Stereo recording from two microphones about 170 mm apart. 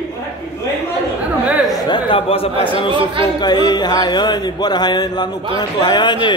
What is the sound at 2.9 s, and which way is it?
Speech, 30° right (ahead or behind).